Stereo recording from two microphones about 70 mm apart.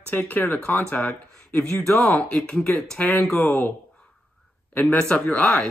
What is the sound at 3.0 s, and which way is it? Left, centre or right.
Speech, left.